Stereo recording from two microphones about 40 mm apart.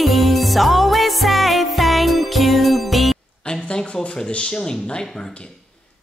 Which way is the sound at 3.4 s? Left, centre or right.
Left.